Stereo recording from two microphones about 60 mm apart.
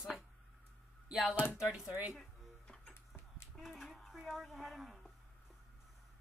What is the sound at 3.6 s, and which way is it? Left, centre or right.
Speech, centre.